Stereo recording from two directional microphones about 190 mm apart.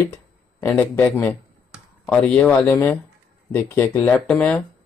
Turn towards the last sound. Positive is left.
turn(degrees=5)  # may be behind; listen again after turning